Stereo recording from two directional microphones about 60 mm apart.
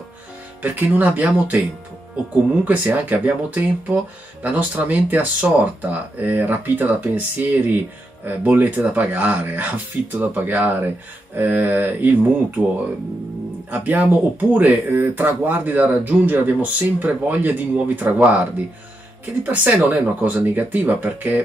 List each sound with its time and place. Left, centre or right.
0.6 s speech: right
13.7 s speech: right